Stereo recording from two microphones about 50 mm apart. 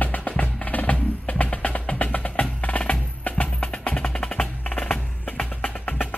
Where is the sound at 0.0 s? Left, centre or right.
Left.